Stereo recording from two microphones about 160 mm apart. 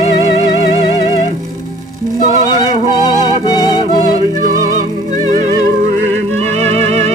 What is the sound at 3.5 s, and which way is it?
Music, 25° left (ahead or behind).